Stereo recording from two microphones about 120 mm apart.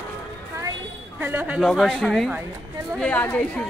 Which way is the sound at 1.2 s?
15° right (ahead or behind).